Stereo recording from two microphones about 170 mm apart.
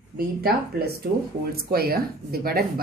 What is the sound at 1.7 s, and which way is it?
Speech, 60° right (ahead or behind).